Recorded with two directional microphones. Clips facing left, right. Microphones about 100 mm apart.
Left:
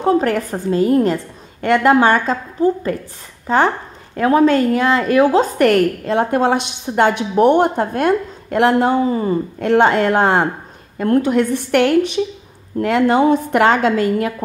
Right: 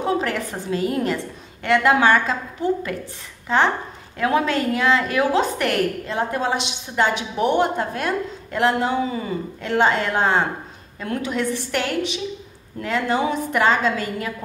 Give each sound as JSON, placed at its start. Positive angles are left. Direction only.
{"t": 0.0, "sound": "a woman's voice", "side_deg": 45}